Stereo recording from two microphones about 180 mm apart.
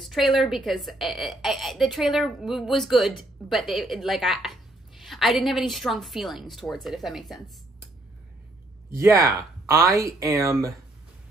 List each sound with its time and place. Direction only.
0.0 s a woman's voice: centre (ahead or behind)
8.9 s speech: 15° right (ahead or behind)